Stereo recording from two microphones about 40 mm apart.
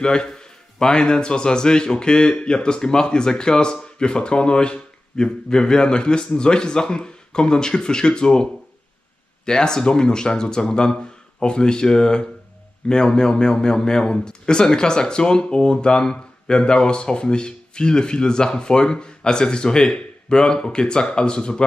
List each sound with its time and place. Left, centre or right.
0.0 s a man's voice: centre
9.5 s a man's voice: centre